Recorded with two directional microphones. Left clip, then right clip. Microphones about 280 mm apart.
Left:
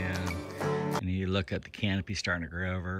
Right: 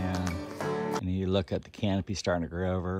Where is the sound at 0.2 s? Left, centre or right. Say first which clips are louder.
Even; centre.